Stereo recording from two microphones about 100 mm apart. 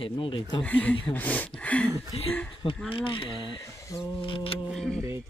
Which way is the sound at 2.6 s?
60° left (ahead or behind).